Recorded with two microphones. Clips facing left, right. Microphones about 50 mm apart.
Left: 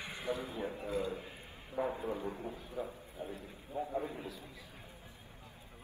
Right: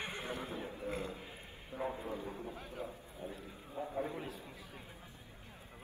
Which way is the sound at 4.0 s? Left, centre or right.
Right.